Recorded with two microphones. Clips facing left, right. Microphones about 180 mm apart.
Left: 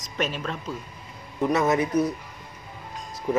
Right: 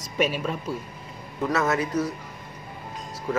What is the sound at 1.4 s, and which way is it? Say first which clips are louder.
Speech: left 2 dB; 20° left (ahead or behind).